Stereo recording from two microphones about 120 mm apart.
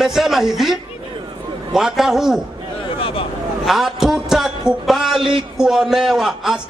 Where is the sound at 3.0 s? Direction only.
45° left (ahead or behind).